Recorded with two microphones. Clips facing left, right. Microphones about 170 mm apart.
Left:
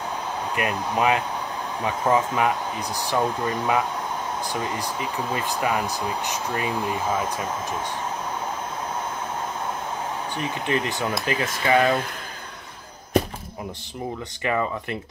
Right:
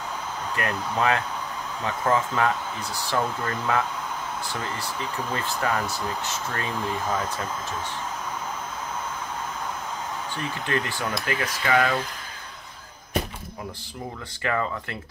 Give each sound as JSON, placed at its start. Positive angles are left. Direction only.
{"t": 0.6, "sound": "speech", "side_deg": 15}
{"t": 10.3, "sound": "speech", "side_deg": 15}
{"t": 14.4, "sound": "speech", "side_deg": 20}